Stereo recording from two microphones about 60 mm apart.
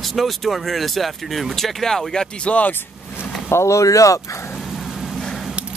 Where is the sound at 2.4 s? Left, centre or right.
Left.